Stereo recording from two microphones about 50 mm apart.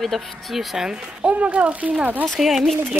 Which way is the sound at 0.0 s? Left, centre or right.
Centre.